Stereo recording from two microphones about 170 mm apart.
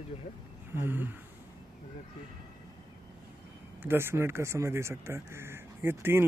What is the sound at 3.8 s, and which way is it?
A man's voice, 15° right (ahead or behind).